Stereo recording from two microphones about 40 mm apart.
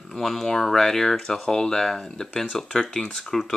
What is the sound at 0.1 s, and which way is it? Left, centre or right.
Speech, centre.